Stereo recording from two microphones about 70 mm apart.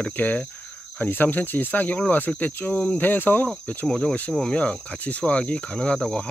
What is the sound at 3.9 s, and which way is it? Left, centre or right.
Cricket, centre.